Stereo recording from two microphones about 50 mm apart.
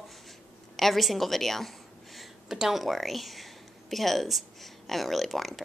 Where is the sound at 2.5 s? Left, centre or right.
Centre.